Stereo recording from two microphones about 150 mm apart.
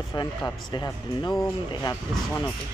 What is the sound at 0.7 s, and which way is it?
Speech, 30° left (ahead or behind).